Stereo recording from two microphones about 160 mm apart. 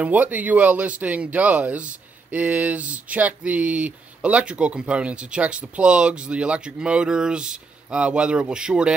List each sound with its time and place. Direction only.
0.0 s speech: 10° right (ahead or behind)